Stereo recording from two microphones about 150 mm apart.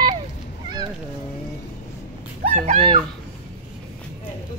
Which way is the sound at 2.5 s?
45° right (ahead or behind).